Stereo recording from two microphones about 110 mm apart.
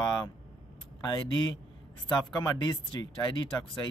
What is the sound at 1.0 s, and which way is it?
Speech, 45° left (ahead or behind).